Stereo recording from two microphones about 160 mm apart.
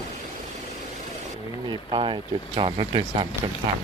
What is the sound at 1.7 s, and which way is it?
Speech, 30° right (ahead or behind).